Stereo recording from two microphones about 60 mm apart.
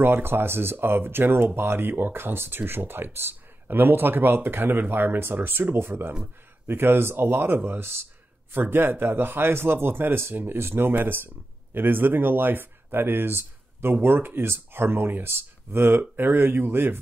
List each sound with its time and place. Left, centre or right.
0.0 s speech: right